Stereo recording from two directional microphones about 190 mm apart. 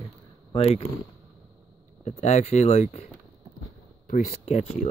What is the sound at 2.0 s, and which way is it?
Speech, 35° left (ahead or behind).